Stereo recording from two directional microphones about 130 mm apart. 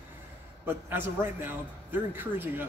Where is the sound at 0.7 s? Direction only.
15° right (ahead or behind).